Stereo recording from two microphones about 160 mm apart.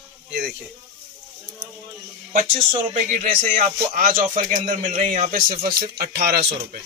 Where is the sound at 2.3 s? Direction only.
55° right (ahead or behind).